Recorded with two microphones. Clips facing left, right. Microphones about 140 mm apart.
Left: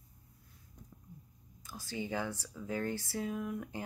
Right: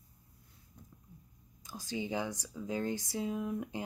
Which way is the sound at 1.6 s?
20° right (ahead or behind).